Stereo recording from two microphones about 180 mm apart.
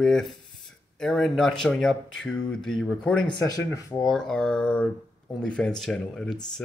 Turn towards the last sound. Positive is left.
turn(degrees=5)  # may be behind; listen again after turning